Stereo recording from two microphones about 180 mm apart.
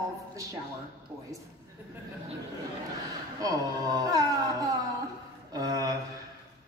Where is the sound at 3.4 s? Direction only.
20° right (ahead or behind).